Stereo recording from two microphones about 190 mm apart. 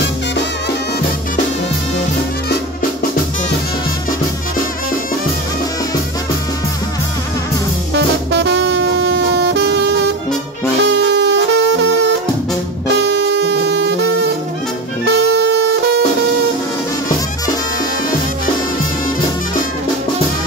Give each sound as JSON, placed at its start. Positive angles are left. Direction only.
{"t": 7.9, "sound": "music", "side_deg": -70}